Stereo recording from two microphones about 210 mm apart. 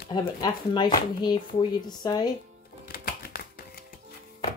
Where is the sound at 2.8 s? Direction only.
45° left (ahead or behind).